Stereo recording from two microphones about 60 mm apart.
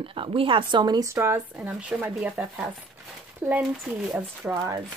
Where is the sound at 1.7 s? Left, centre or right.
Right.